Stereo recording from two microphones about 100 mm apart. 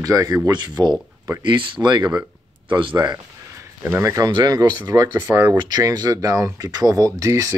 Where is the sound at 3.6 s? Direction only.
30° right (ahead or behind).